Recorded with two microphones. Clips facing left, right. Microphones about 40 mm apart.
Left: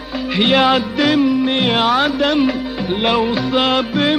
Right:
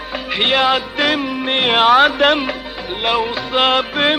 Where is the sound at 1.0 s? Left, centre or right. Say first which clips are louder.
Left 4 dB; centre.